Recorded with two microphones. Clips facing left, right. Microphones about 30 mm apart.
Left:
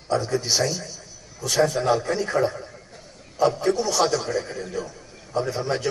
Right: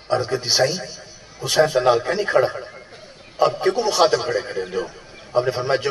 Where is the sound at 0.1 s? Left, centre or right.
Right.